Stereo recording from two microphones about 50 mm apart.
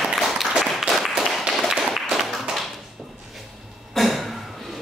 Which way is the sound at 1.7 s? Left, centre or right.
Centre.